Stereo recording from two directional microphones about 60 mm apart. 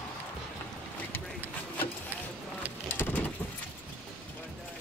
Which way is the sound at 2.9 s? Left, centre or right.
Left.